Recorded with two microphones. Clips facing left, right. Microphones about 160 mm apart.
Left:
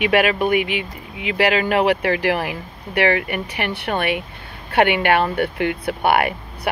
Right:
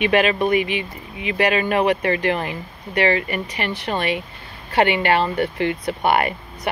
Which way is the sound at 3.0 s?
70° left (ahead or behind).